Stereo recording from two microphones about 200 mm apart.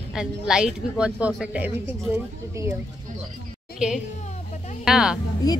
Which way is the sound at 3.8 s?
5° right (ahead or behind).